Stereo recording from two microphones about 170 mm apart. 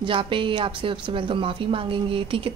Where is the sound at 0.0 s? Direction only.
30° right (ahead or behind).